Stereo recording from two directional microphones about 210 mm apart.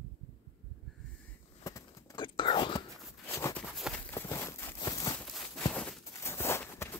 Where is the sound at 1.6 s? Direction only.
15° left (ahead or behind).